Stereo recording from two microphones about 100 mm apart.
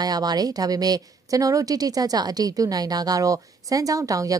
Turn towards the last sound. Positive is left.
turn(degrees=-35)  # may be behind; listen again after turning